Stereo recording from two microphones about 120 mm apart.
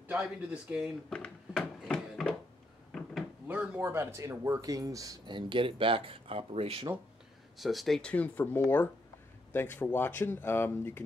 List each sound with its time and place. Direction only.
0.1 s speech: 10° right (ahead or behind)
1.1 s a sound: 5° left (ahead or behind)
3.4 s speech: 15° right (ahead or behind); by 6.9 s 55° right (ahead or behind)
7.5 s speech: centre (ahead or behind); by 11.1 s 20° left (ahead or behind)